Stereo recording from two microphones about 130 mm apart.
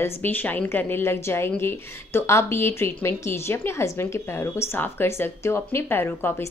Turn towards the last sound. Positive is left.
turn(degrees=15)  # may be behind; listen again after turning